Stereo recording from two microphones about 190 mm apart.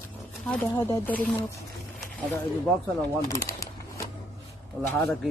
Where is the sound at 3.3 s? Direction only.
15° left (ahead or behind).